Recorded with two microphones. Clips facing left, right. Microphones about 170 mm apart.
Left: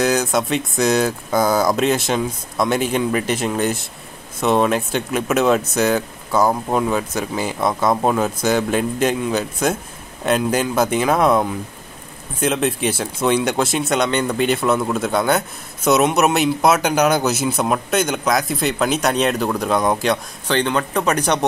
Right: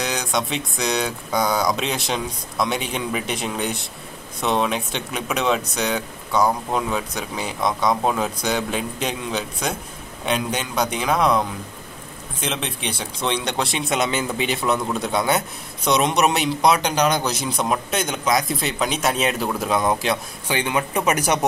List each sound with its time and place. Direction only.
0.0 s speech: 5° left (ahead or behind)